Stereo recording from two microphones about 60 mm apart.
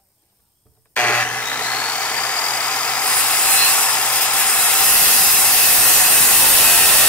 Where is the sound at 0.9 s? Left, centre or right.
Left.